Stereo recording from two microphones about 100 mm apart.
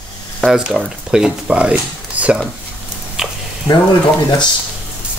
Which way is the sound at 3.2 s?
5° right (ahead or behind).